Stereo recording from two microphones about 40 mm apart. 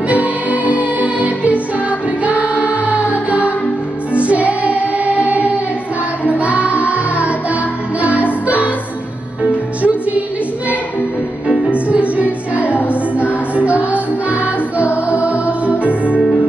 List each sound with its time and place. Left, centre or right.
0.1 s music: right
9.4 s music: right
11.7 s music: right
15.8 s music: left